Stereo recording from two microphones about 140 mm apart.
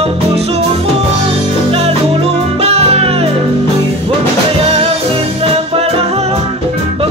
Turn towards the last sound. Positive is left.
turn(degrees=-45)  # may be behind; listen again after turning